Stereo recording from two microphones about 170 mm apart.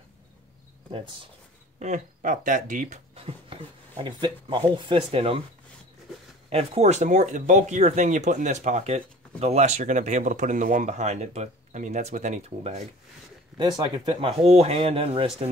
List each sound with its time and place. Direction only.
1.8 s speech: 45° right (ahead or behind)
3.2 s speech: 35° right (ahead or behind)
6.5 s speech: 40° right (ahead or behind)
13.6 s speech: 25° right (ahead or behind)